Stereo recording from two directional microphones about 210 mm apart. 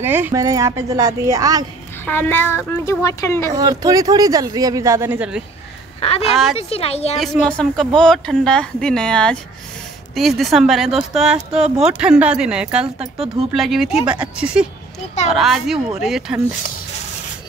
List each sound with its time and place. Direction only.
0.0 s speech: 10° right (ahead or behind)
2.0 s speech: 10° left (ahead or behind)
3.5 s speech: 15° right (ahead or behind)
5.9 s a woman's voice: 30° left (ahead or behind)
7.2 s speech: 5° left (ahead or behind)